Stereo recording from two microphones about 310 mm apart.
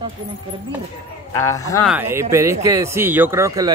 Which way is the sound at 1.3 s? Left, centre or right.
Centre.